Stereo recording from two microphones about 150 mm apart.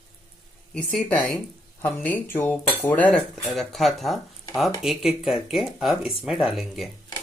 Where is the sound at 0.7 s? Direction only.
10° left (ahead or behind).